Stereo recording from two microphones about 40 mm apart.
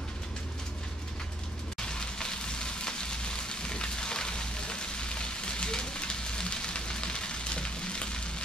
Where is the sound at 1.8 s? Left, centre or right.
Centre.